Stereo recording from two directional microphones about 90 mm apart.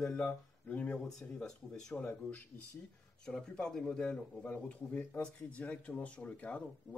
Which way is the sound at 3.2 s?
10° left (ahead or behind).